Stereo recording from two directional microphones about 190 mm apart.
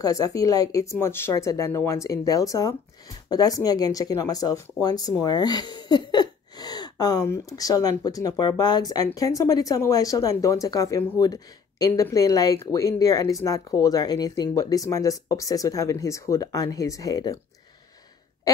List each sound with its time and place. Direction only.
0.0 s speech: 20° left (ahead or behind)